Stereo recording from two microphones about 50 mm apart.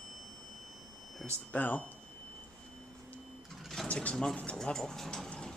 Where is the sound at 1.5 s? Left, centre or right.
Left.